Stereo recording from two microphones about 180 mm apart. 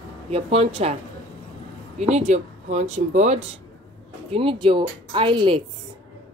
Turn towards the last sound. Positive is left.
turn(degrees=-25)  # may be behind; listen again after turning